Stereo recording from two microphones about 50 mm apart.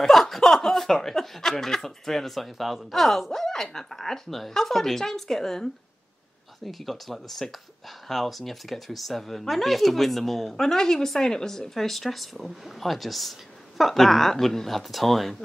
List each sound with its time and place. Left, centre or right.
0.0 s a woman's voice: centre